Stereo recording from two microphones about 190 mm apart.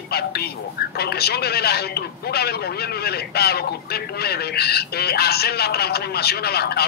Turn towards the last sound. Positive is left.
turn(degrees=55)  # may be behind; listen again after turning